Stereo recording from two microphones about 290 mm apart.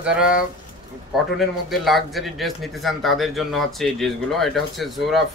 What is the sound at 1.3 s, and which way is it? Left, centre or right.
A man's voice, centre.